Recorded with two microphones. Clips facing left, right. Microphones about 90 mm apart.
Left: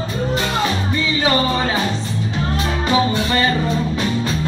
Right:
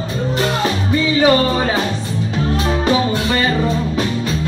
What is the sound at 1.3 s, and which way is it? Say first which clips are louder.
Music: right 1 dB; 10° right (ahead or behind).